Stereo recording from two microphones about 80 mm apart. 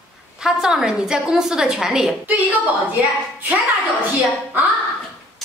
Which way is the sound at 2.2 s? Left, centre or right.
Centre.